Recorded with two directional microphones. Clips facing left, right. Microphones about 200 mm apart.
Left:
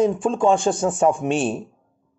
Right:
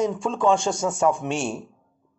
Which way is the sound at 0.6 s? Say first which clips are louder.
Left 4 dB; 55° left (ahead or behind).